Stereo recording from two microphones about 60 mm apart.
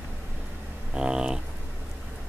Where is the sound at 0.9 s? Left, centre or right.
Centre.